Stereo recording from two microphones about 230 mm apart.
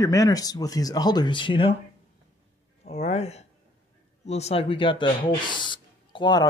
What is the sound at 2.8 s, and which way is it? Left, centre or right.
Speech, left.